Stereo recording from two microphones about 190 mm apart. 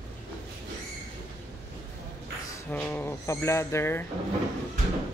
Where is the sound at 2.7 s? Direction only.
10° left (ahead or behind).